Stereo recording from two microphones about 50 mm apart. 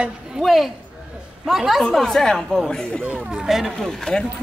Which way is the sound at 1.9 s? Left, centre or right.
Centre.